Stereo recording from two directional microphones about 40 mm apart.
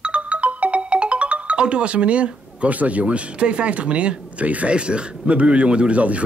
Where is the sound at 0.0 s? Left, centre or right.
Right.